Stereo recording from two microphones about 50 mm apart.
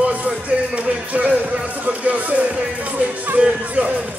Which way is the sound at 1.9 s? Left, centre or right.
Right.